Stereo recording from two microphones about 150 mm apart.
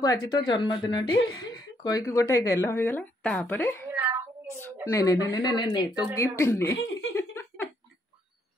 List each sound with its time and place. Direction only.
0.0 s a woman's voice: 25° left (ahead or behind)
3.9 s child singing: 15° right (ahead or behind)
4.8 s speech: 20° left (ahead or behind)
6.1 s a sound: 20° left (ahead or behind)